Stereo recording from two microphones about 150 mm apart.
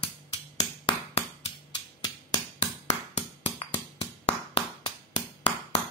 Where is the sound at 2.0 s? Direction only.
25° left (ahead or behind).